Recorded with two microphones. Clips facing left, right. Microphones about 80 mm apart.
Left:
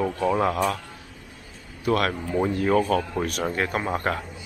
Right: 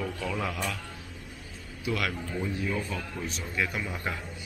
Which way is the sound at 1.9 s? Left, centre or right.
Left.